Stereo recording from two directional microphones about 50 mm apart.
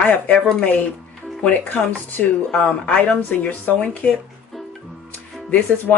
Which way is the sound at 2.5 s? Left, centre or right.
Left.